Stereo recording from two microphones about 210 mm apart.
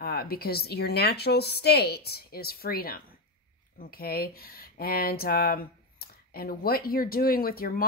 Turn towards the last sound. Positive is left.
turn(degrees=45)  # may be behind; listen again after turning